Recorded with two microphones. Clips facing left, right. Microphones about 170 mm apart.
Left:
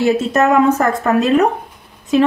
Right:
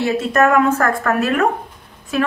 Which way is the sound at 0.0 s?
20° left (ahead or behind).